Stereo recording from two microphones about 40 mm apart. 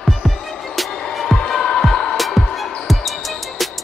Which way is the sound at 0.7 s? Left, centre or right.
Centre.